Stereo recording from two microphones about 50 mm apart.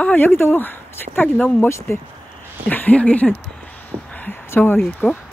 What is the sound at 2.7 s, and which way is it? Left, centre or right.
Speech, left.